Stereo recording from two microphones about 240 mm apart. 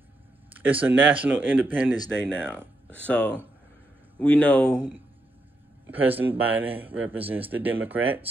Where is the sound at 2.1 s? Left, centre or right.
Centre.